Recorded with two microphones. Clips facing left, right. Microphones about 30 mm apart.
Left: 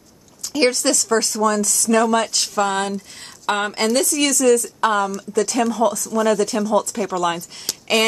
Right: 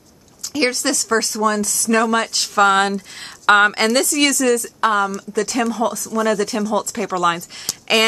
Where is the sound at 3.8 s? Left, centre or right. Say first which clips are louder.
Right 2 dB; right.